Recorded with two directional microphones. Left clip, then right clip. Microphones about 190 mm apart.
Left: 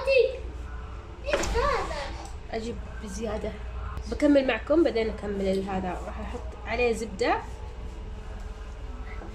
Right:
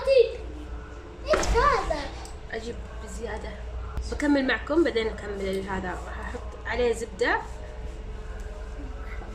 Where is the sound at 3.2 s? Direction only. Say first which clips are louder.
Left 2 dB; 10° left (ahead or behind).